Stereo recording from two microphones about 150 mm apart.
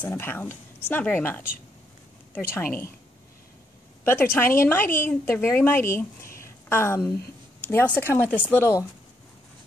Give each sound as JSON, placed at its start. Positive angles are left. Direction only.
{"t": 0.0, "sound": "a woman's voice", "side_deg": 15}
{"t": 4.0, "sound": "a woman's voice", "side_deg": 15}